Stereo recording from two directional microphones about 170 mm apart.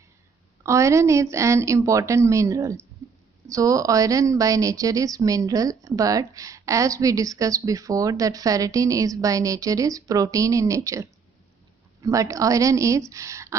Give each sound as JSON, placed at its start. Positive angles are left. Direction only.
{"t": 0.7, "sound": "speech", "side_deg": -15}
{"t": 3.0, "sound": "a sound", "side_deg": -20}
{"t": 3.4, "sound": "a woman's voice", "side_deg": -20}